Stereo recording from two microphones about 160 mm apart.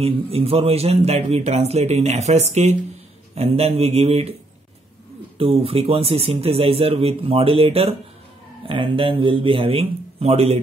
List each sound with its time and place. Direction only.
0.0 s speech: 40° right (ahead or behind)
5.4 s speech: 35° right (ahead or behind)